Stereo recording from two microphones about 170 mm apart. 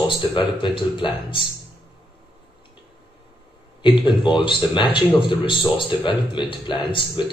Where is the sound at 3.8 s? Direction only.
30° left (ahead or behind).